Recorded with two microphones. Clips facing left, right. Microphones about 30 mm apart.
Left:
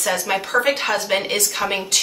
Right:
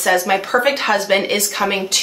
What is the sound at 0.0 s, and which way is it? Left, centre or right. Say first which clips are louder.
A woman's voice: right 5 dB; right.